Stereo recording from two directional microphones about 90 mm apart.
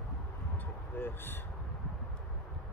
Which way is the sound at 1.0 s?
25° left (ahead or behind).